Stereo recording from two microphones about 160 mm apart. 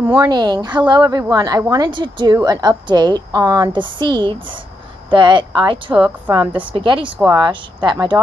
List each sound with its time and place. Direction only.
0.3 s a woman's voice: 25° right (ahead or behind)